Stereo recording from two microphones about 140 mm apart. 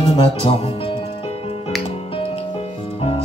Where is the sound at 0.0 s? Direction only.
40° left (ahead or behind).